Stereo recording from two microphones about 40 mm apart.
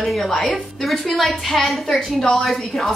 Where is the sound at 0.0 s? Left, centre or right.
Centre.